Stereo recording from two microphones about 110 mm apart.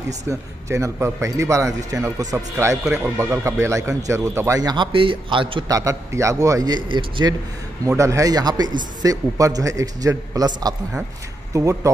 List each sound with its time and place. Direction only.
0.3 s a man's voice: 25° right (ahead or behind)
4.9 s a man's voice: 50° right (ahead or behind)
5.7 s a man's voice: 30° right (ahead or behind)
8.0 s a man's voice: 30° right (ahead or behind)